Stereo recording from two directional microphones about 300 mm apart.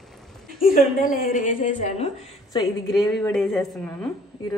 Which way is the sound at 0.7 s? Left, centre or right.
Left.